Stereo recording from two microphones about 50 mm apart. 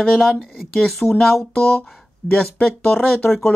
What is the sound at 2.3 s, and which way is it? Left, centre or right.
Speech, centre.